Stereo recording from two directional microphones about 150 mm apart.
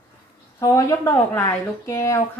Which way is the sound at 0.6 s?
20° left (ahead or behind).